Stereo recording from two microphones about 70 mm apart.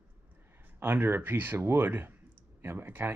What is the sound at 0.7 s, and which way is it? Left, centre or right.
Speech, right.